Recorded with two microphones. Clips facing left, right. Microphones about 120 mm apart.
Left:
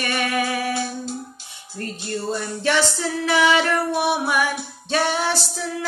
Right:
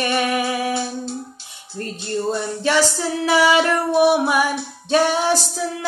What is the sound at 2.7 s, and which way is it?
Female singing, 10° right (ahead or behind).